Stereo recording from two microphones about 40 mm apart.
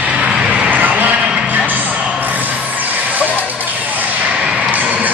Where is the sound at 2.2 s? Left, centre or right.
Right.